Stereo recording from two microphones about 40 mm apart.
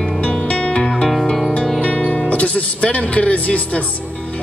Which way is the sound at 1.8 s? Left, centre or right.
Left.